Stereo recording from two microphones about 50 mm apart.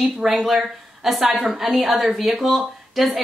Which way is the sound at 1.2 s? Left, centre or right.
Centre.